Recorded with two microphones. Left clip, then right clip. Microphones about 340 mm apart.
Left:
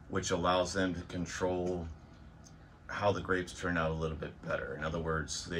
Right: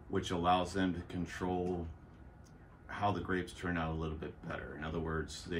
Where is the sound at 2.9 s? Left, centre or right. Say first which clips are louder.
Left 4 dB; centre.